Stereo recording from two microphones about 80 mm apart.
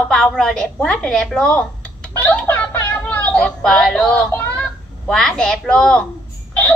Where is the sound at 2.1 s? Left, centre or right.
Centre.